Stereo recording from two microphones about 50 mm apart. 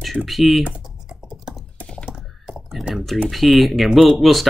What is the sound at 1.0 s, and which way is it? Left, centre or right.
Computer keyboard, centre.